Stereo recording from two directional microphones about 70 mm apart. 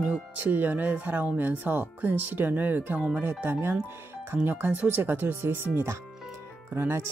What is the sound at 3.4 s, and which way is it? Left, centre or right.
Speech, right.